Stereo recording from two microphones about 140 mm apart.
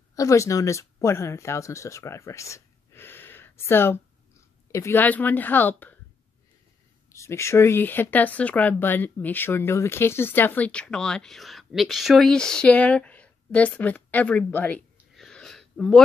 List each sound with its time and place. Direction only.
0.1 s speech: 25° left (ahead or behind)
7.1 s speech: 20° left (ahead or behind)
15.1 s a sound: 5° left (ahead or behind)